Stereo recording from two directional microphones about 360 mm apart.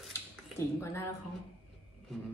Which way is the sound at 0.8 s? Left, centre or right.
Centre.